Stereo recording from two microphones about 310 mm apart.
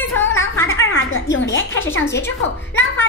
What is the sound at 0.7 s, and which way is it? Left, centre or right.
Music, left.